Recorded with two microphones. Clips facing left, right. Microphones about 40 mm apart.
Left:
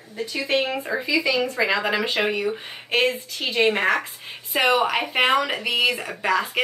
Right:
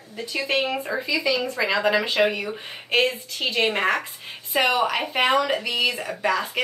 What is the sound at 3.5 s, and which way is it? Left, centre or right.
Speech, centre.